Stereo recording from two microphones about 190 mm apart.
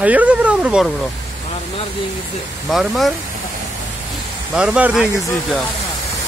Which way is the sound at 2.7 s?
Centre (ahead or behind).